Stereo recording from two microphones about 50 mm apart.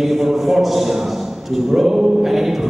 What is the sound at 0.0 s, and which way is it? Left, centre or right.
A man's voice, centre.